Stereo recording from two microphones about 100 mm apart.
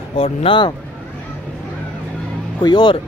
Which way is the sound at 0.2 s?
75° left (ahead or behind).